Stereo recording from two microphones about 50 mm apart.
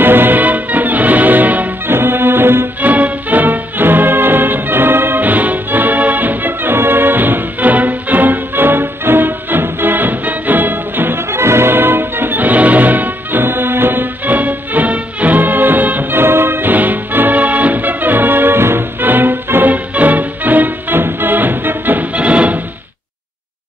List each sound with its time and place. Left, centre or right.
0.0 s music: right
1.9 s music: right
2.8 s music: right
11.3 s music: right
22.1 s music: right